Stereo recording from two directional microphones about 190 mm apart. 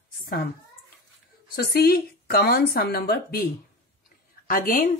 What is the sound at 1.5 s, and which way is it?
Speech, 55° left (ahead or behind).